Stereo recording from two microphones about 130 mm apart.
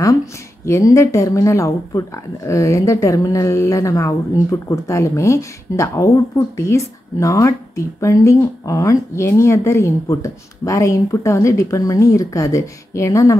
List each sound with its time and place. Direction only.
0.7 s speech: 20° left (ahead or behind)